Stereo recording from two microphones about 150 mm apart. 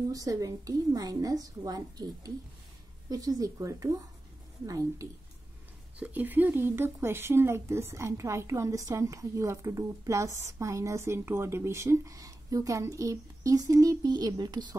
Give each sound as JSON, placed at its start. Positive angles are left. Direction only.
{"t": 0.1, "sound": "speech", "side_deg": -25}
{"t": 5.9, "sound": "speech", "side_deg": -10}